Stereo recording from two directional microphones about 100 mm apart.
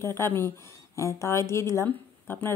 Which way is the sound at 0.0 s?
25° left (ahead or behind).